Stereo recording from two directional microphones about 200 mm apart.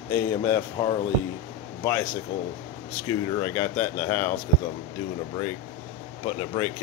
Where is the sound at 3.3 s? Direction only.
15° left (ahead or behind).